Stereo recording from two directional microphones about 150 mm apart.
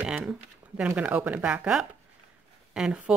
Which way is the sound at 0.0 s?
5° right (ahead or behind).